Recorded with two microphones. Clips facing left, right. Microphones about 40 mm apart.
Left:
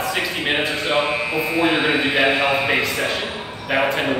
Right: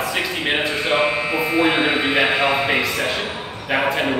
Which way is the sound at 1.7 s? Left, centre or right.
Right.